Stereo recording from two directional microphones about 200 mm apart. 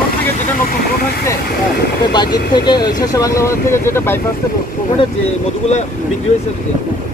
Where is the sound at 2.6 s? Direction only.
20° left (ahead or behind).